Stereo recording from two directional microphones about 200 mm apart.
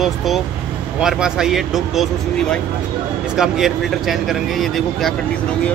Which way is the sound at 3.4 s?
Centre (ahead or behind).